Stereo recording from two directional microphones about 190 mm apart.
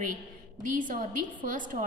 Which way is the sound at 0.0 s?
45° right (ahead or behind).